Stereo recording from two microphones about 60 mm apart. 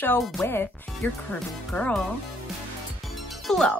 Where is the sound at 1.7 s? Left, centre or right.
Centre.